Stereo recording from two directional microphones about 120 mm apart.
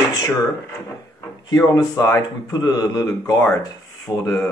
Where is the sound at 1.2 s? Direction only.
30° left (ahead or behind).